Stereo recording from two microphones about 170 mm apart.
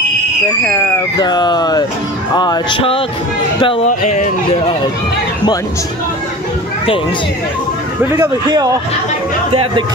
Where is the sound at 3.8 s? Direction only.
45° left (ahead or behind).